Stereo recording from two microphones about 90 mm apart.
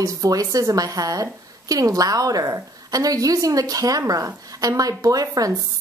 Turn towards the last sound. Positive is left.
turn(degrees=-40)  # may be behind; listen again after turning